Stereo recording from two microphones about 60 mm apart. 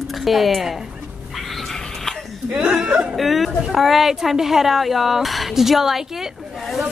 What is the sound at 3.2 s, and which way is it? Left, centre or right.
A woman's voice, centre.